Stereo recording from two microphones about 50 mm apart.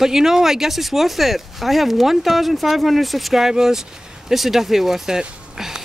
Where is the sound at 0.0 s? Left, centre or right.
Centre.